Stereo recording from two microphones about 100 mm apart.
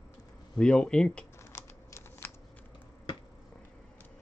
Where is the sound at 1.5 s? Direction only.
25° left (ahead or behind).